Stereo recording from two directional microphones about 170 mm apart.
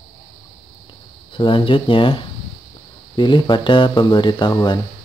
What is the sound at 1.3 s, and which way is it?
Speech, 30° left (ahead or behind).